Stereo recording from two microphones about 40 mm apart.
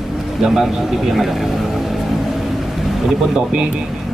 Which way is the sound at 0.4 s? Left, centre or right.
Centre.